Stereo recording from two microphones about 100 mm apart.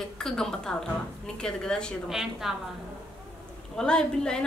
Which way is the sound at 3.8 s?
5° left (ahead or behind).